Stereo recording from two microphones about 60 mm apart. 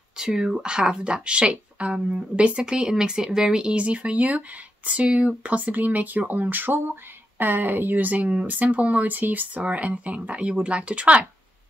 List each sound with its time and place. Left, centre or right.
0.2 s speech: centre